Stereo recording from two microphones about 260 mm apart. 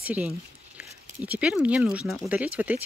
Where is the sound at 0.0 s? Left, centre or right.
Centre.